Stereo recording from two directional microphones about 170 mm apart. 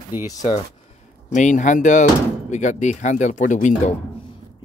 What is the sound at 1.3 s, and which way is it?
Speech, 45° left (ahead or behind).